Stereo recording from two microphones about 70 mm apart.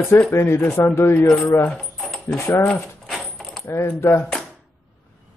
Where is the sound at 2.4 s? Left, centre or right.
Left.